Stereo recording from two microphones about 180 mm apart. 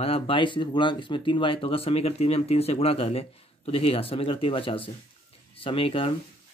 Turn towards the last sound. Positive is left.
turn(degrees=30)  # may be behind; listen again after turning